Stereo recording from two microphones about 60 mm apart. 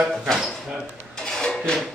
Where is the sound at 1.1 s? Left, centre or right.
Centre.